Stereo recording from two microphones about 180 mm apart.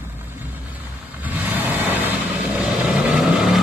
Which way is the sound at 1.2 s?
10° right (ahead or behind).